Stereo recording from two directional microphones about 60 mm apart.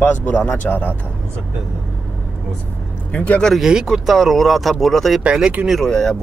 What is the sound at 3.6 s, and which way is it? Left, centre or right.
Speech, centre.